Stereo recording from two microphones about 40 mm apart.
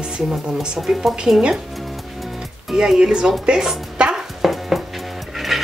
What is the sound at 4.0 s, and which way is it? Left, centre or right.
Music, right.